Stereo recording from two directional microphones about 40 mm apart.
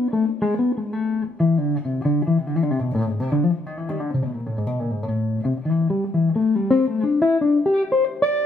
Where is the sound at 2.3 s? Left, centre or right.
Left.